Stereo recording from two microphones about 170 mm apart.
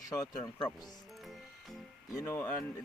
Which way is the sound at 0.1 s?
20° left (ahead or behind).